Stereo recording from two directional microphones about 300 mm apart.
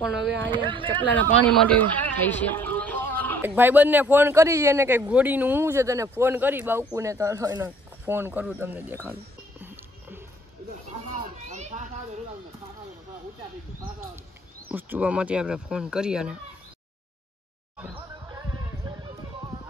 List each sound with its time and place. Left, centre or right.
0.5 s a man's voice: centre
1.5 s a sound: centre
3.4 s a man's voice: centre
9.6 s music: centre
11.1 s a sound: right
14.7 s speech: centre
17.9 s music: centre